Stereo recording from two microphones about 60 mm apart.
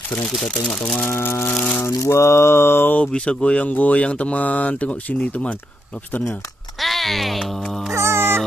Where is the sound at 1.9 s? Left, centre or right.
Left.